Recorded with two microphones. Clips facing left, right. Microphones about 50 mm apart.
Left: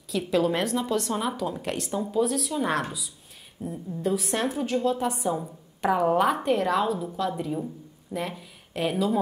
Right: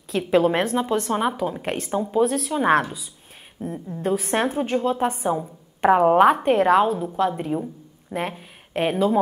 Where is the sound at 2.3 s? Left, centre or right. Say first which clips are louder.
Right 4 dB; right.